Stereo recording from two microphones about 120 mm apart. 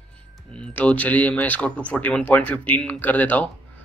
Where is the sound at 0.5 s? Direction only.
10° left (ahead or behind).